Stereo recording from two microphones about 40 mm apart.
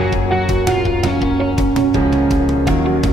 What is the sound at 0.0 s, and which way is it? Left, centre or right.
Music, centre.